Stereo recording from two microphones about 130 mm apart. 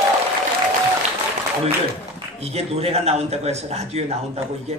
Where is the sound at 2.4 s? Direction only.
50° right (ahead or behind).